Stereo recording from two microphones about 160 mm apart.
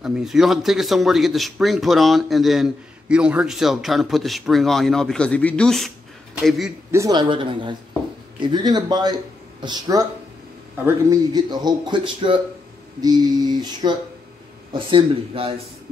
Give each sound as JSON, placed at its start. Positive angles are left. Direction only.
{"t": 0.0, "sound": "speech", "side_deg": 0}
{"t": 6.9, "sound": "speech", "side_deg": -20}
{"t": 13.0, "sound": "a sound", "side_deg": -25}
{"t": 14.7, "sound": "speech", "side_deg": -35}